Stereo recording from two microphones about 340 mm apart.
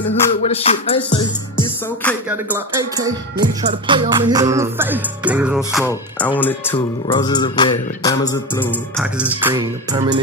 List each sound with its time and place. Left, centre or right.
0.1 s speech: centre
2.5 s music: centre
5.9 s speech: centre
9.2 s music: centre